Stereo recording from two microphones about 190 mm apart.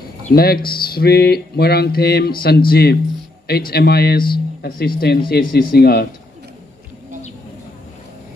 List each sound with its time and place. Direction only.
0.3 s mantra: 55° left (ahead or behind)